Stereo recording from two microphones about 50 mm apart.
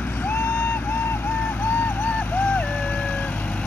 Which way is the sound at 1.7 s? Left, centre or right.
Left.